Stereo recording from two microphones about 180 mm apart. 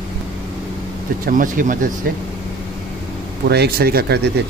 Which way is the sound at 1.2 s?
50° right (ahead or behind).